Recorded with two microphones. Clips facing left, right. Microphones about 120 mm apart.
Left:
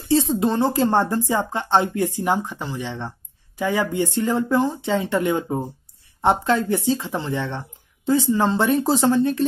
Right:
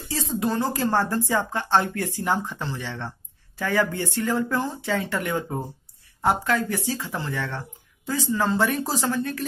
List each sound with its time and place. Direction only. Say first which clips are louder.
0.1 s speech: left 7 dB; 25° left (ahead or behind)